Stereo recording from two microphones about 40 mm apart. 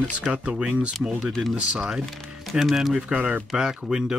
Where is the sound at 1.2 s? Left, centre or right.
Centre.